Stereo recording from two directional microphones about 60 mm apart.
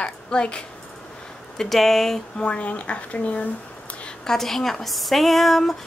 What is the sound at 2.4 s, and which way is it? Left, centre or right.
Speech, left.